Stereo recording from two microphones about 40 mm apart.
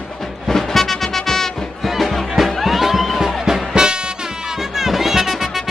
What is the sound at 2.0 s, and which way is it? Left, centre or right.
Music, centre.